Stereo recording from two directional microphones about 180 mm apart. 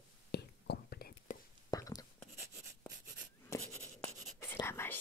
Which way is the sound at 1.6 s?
20° left (ahead or behind).